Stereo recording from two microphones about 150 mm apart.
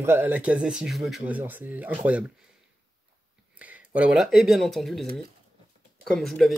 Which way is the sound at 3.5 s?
10° right (ahead or behind).